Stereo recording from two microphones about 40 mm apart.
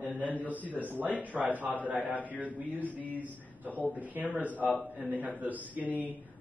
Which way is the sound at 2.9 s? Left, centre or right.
Left.